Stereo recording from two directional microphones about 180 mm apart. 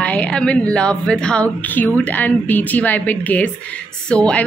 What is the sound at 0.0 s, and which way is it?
A woman's voice, 5° left (ahead or behind).